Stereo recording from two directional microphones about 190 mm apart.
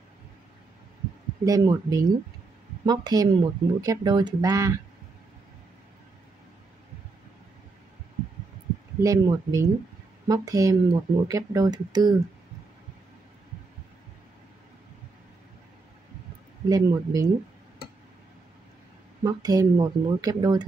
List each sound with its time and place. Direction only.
1.4 s speech: 20° right (ahead or behind)
9.0 s speech: 15° right (ahead or behind)
16.6 s speech: 20° right (ahead or behind)
19.2 s speech: 20° right (ahead or behind)